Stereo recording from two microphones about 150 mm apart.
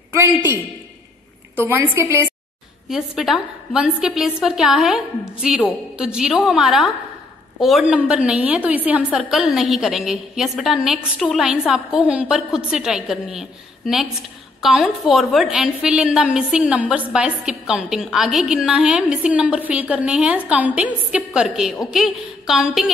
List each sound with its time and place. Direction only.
0.1 s a man's voice: 15° right (ahead or behind)
1.6 s a woman's voice: 15° right (ahead or behind)
2.9 s a woman's voice: centre (ahead or behind)